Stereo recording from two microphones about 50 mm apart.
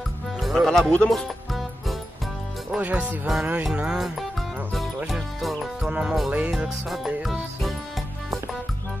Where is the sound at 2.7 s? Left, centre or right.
Right.